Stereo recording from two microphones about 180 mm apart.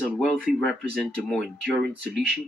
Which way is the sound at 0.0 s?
5° left (ahead or behind).